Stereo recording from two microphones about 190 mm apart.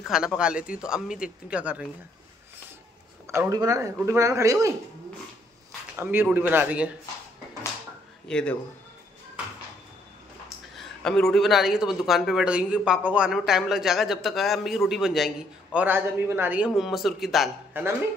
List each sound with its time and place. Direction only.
0.0 s speech: 5° right (ahead or behind)
3.3 s speech: 15° right (ahead or behind)
5.9 s speech: 10° right (ahead or behind)
8.3 s speech: 5° left (ahead or behind)
10.8 s speech: 5° left (ahead or behind)